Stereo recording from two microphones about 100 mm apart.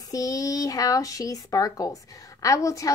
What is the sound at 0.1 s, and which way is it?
A woman's voice, 35° left (ahead or behind).